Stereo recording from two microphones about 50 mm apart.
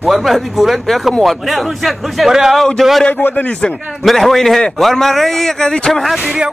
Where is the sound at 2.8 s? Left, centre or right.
Centre.